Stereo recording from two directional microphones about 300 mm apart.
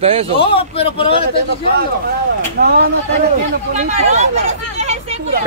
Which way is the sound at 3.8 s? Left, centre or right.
Right.